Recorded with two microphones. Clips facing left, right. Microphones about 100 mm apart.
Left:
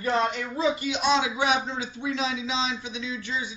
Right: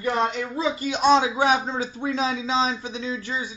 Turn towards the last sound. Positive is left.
turn(degrees=-40)  # may be behind; listen again after turning